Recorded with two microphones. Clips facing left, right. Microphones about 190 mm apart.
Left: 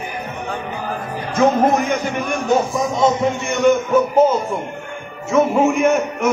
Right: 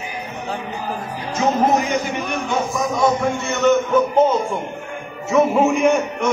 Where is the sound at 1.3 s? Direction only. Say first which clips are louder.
Left 3 dB; 55° left (ahead or behind).